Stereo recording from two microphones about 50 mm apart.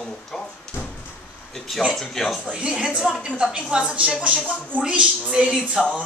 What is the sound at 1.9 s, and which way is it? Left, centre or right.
Speech, centre.